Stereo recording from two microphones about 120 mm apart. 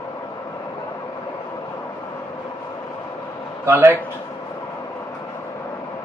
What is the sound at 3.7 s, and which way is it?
Speech, 25° right (ahead or behind).